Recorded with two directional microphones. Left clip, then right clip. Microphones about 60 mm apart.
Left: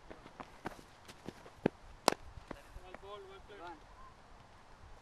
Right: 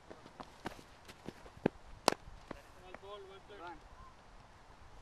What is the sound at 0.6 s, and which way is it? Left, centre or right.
Walk, right.